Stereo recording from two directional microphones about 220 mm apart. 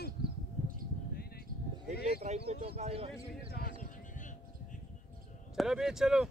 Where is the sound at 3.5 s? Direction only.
40° left (ahead or behind).